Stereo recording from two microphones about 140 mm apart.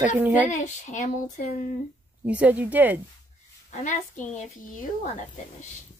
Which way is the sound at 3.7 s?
60° left (ahead or behind).